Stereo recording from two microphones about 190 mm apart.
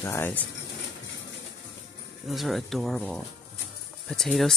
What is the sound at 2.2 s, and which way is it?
Speech, centre (ahead or behind).